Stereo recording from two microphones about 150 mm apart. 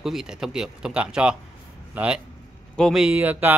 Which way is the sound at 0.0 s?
5° right (ahead or behind).